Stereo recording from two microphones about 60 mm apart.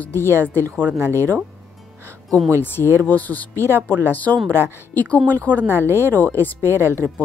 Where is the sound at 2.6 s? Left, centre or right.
Left.